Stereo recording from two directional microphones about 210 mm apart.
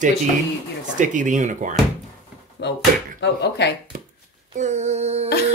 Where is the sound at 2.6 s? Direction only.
55° left (ahead or behind).